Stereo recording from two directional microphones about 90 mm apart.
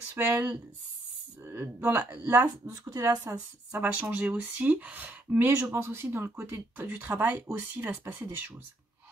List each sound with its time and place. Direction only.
0.2 s speech: 25° right (ahead or behind)
3.7 s speech: 15° right (ahead or behind)
5.6 s speech: 30° right (ahead or behind)